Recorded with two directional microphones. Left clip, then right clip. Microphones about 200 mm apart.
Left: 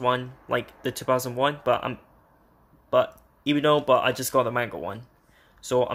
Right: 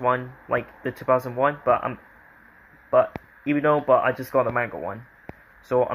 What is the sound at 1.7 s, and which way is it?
Speech, 30° left (ahead or behind).